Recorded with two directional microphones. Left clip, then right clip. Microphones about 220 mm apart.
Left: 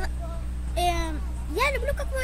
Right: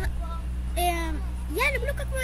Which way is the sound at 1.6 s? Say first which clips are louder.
Left 1 dB; 15° left (ahead or behind).